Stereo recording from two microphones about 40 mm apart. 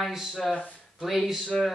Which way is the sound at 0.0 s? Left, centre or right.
Centre.